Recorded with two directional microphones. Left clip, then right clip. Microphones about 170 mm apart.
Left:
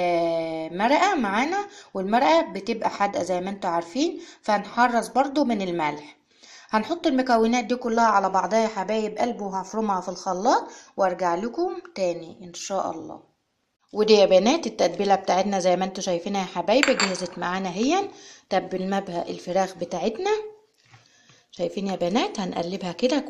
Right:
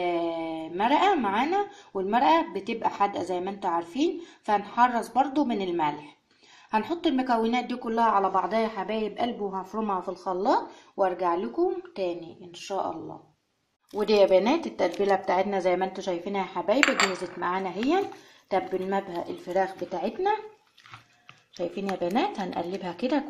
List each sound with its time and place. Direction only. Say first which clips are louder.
0.0 s a sound: left 5 dB; 25° left (ahead or behind)
2.0 s a woman's voice: left 3 dB; 25° left (ahead or behind)
13.9 s a woman's voice: left 4 dB; 25° left (ahead or behind)
21.9 s a woman's voice: left 2 dB; 25° left (ahead or behind)